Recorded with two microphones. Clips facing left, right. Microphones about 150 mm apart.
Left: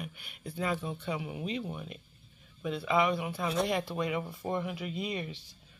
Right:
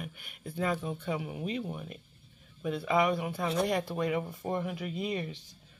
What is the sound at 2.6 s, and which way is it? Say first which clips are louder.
Speech: right 1 dB; 40° right (ahead or behind).